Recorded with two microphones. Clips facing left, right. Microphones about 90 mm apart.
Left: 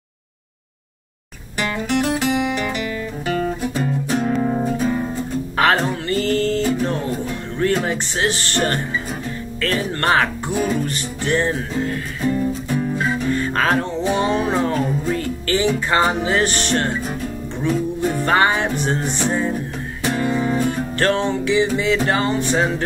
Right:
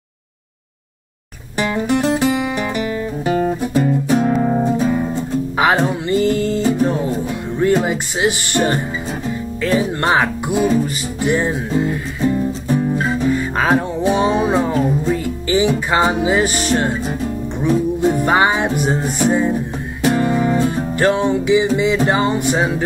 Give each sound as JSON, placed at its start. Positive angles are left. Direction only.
{"t": 2.1, "sound": "music", "side_deg": -35}
{"t": 3.7, "sound": "music", "side_deg": -5}
{"t": 9.6, "sound": "speech", "side_deg": -15}
{"t": 11.2, "sound": "music", "side_deg": -15}
{"t": 20.2, "sound": "music", "side_deg": -20}
{"t": 21.0, "sound": "music", "side_deg": -15}